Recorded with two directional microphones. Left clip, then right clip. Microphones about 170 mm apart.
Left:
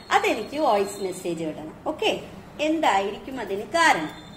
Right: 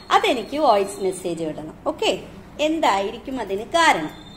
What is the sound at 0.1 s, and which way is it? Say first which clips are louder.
Speech: right 4 dB; 50° right (ahead or behind).